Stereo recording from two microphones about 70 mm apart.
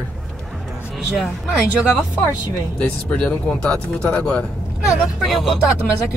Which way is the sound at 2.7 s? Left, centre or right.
Centre.